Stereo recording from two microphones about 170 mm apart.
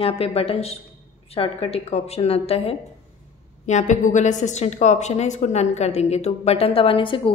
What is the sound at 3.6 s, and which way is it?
A woman's voice, 45° left (ahead or behind).